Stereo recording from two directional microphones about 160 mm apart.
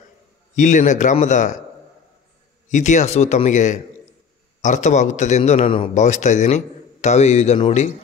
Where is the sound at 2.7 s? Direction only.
50° left (ahead or behind).